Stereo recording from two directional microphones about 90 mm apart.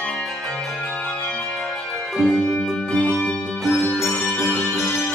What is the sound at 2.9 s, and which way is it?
Music, 10° left (ahead or behind).